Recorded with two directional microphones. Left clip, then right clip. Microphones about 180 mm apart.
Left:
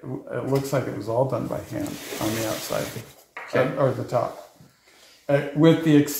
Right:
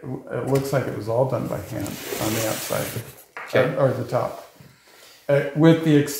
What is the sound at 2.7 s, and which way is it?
Speech, 30° left (ahead or behind).